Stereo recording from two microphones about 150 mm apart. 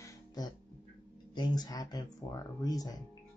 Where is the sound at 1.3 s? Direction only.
30° left (ahead or behind).